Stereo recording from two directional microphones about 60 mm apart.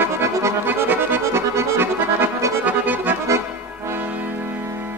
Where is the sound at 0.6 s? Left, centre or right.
Right.